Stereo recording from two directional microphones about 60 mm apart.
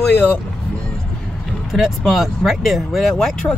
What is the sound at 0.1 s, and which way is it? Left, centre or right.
Speech, left.